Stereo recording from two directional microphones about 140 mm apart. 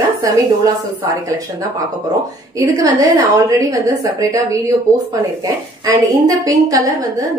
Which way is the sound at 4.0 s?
25° right (ahead or behind).